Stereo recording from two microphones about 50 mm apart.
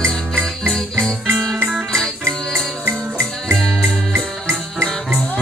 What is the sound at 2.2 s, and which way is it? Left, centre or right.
Music, right.